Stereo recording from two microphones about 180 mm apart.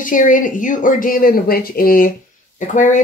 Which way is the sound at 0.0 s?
50° left (ahead or behind).